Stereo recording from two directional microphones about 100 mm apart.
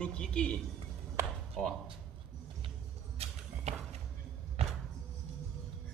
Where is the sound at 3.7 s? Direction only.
90° right.